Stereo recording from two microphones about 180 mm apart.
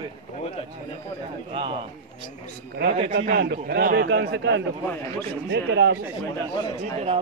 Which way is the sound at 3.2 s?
65° right (ahead or behind).